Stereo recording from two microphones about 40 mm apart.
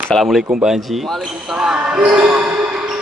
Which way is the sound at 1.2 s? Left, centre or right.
Centre.